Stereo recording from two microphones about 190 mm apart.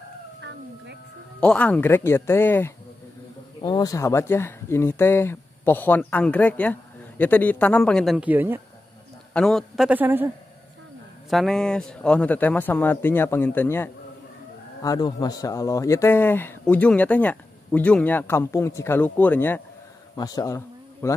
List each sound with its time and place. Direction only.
1.4 s speech: 5° left (ahead or behind); by 8.6 s 10° right (ahead or behind)
9.3 s a man's voice: 5° left (ahead or behind)
11.2 s speech: centre (ahead or behind)